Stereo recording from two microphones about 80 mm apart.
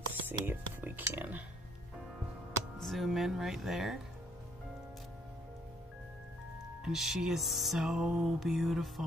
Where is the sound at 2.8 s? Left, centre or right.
Centre.